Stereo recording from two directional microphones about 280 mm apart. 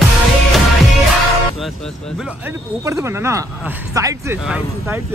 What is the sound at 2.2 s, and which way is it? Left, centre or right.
Speech, centre.